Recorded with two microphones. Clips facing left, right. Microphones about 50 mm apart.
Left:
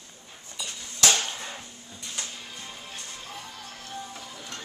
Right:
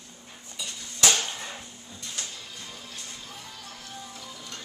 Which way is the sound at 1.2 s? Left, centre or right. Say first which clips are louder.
Even; centre.